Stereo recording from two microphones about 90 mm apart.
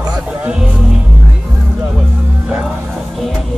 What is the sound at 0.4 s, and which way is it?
Music, 10° right (ahead or behind).